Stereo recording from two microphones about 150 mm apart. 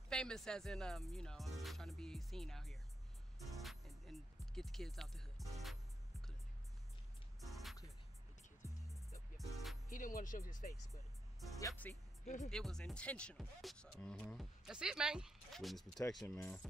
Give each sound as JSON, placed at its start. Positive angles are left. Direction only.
{"t": 0.1, "sound": "speech", "side_deg": 5}
{"t": 3.3, "sound": "music", "side_deg": 0}
{"t": 7.3, "sound": "music", "side_deg": 0}
{"t": 8.6, "sound": "music", "side_deg": 20}
{"t": 9.4, "sound": "music", "side_deg": 0}
{"t": 9.9, "sound": "speech", "side_deg": 60}
{"t": 11.9, "sound": "speech", "side_deg": 10}